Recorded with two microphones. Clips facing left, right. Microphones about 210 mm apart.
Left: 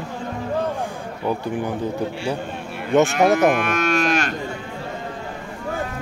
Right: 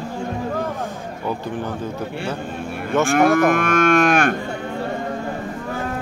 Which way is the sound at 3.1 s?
50° right (ahead or behind).